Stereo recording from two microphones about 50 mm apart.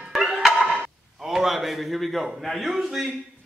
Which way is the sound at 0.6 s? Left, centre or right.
Right.